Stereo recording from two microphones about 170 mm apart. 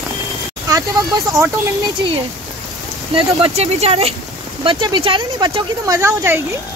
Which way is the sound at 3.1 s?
35° right (ahead or behind).